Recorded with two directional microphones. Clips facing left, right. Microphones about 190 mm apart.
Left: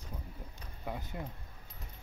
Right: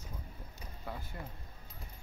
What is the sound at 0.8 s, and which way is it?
Speech, 20° left (ahead or behind).